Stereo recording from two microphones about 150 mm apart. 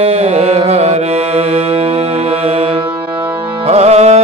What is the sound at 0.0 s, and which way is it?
Music, 40° right (ahead or behind).